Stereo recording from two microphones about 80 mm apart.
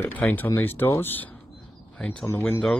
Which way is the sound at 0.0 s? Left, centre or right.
Left.